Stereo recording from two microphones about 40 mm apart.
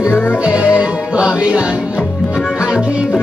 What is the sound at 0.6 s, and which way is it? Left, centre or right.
Music, right.